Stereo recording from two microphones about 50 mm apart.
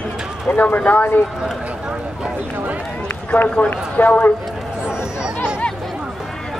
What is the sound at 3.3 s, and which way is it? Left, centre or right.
Speech, centre.